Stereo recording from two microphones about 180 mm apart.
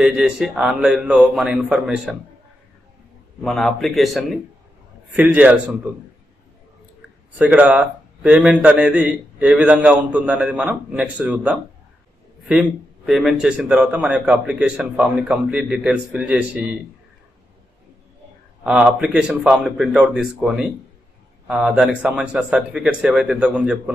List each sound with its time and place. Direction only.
0.0 s speech: 5° right (ahead or behind)
3.4 s a man's voice: centre (ahead or behind)
7.3 s a man's voice: 5° right (ahead or behind)
18.6 s speech: 5° right (ahead or behind)